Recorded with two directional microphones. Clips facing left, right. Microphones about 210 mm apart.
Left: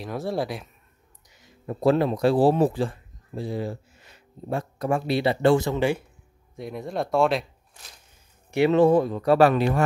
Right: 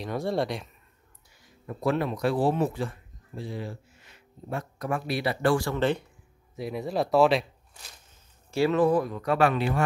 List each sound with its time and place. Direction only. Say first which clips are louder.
0.0 s speech: even; centre (ahead or behind)
1.3 s speech: left 6 dB; 25° left (ahead or behind)
6.5 s speech: right 1 dB; centre (ahead or behind)
8.5 s speech: left 4 dB; 20° left (ahead or behind); by 9.7 s 40° left (ahead or behind)